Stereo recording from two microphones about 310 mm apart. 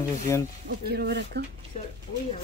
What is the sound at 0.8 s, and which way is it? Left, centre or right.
Speech, right.